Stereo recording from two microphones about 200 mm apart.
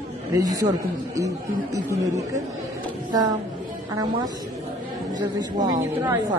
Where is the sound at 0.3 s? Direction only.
15° right (ahead or behind).